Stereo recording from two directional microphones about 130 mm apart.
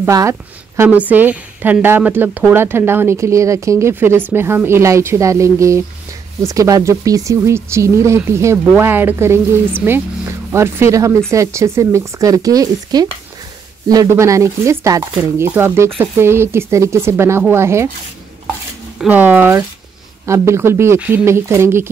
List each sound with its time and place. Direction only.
0.0 s speech: 25° right (ahead or behind)
0.8 s a woman's voice: 10° right (ahead or behind)
18.9 s a woman's voice: 15° right (ahead or behind)